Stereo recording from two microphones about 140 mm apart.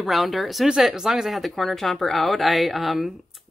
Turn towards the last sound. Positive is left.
turn(degrees=0)  # may be behind; listen again after turning